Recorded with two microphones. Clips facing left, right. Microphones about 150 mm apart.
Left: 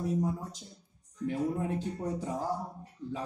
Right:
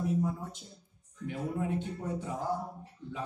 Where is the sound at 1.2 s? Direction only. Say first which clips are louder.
Left 3 dB; 35° left (ahead or behind).